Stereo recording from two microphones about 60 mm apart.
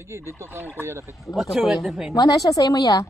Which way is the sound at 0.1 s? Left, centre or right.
Right.